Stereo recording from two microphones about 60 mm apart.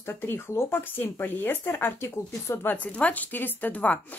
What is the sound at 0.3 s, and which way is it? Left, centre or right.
Speech, left.